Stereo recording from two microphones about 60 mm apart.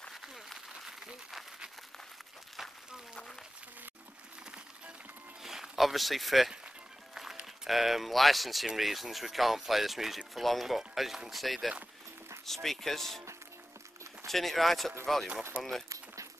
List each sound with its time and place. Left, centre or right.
0.1 s applause: centre
5.4 s speech: centre
14.2 s speech: centre
15.5 s speech: right